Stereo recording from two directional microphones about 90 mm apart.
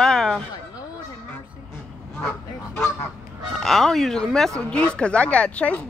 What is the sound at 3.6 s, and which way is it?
Speech, 5° left (ahead or behind).